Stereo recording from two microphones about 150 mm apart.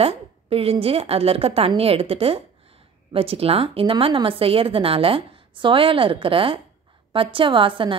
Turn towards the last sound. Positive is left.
turn(degrees=-35)  # may be behind; listen again after turning